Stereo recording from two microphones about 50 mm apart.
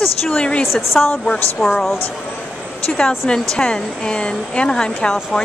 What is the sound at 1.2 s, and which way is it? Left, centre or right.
Speech, centre.